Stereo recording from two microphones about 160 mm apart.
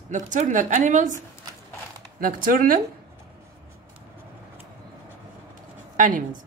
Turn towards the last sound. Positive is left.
turn(degrees=-55)  # may be behind; listen again after turning